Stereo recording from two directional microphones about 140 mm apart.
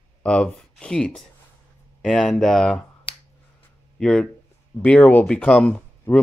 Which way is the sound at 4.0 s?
5° left (ahead or behind).